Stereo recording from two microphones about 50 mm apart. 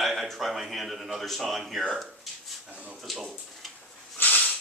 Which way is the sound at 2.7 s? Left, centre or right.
Right.